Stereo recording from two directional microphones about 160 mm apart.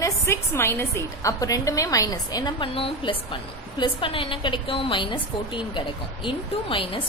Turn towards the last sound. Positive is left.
turn(degrees=30)  # may be behind; listen again after turning